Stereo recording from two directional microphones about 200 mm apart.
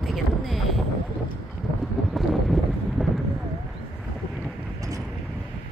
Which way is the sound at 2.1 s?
Centre (ahead or behind).